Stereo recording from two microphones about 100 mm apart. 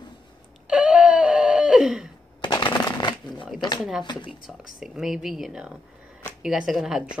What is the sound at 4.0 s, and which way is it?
Speech, 50° left (ahead or behind).